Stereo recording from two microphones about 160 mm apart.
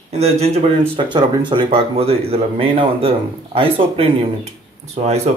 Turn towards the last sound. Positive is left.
turn(degrees=-45)  # may be behind; listen again after turning